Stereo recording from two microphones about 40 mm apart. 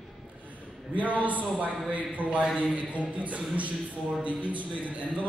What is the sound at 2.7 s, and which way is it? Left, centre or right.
A man's voice, right.